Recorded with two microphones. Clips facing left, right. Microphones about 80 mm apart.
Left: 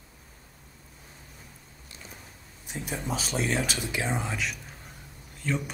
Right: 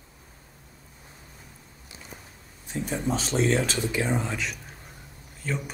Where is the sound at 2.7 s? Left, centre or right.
Centre.